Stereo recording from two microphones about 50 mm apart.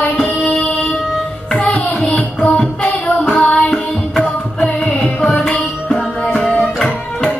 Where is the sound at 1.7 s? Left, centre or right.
Centre.